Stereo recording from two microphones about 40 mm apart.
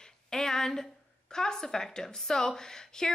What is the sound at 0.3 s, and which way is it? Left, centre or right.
A woman's voice, centre.